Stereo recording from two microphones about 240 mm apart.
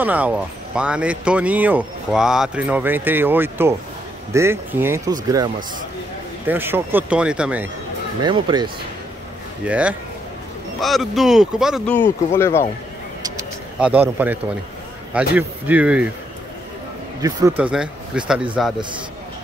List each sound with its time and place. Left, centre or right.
0.0 s speech: centre
6.4 s speech: centre
8.2 s speech: centre
9.7 s speech: centre
13.7 s a man's voice: centre
17.2 s speech: centre
17.6 s speech: centre